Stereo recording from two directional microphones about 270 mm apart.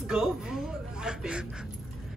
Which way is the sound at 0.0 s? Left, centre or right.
Centre.